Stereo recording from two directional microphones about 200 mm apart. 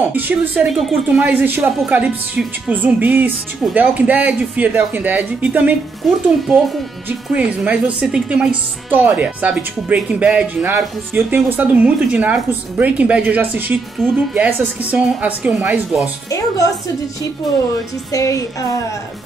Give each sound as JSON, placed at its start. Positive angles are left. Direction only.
{"t": 0.1, "sound": "a woman's voice", "side_deg": -5}
{"t": 16.3, "sound": "music", "side_deg": 15}
{"t": 18.1, "sound": "music", "side_deg": 15}